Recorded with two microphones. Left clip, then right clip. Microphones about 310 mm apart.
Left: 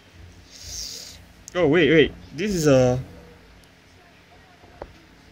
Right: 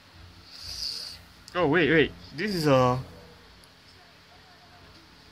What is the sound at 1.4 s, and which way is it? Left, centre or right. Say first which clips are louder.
Speech: left 5 dB; centre.